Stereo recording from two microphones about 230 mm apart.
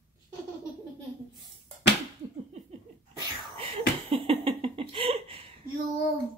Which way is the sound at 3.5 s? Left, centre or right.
Right.